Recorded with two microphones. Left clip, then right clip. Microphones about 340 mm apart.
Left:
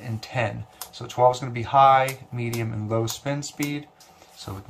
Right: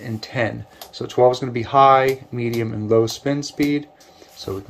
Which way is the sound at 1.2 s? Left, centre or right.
Left.